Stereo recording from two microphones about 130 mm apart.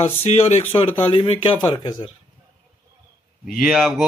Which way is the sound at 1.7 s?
35° left (ahead or behind).